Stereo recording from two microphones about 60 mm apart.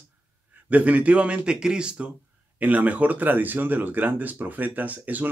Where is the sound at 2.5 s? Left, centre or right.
Right.